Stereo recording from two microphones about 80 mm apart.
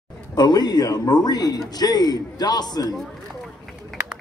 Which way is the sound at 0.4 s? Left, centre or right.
Left.